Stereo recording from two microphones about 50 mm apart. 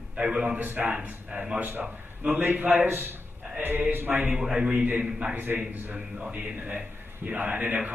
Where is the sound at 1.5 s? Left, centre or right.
Right.